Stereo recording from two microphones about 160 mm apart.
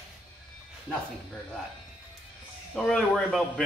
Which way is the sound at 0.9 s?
Centre (ahead or behind).